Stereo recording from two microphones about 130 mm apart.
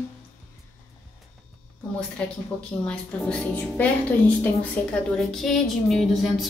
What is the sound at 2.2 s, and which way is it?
A woman's voice, 10° left (ahead or behind).